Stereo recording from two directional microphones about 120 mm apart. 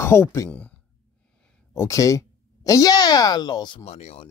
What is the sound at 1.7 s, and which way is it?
Speech, 25° left (ahead or behind).